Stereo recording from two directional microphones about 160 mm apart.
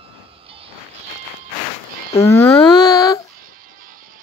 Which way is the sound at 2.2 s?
15° left (ahead or behind).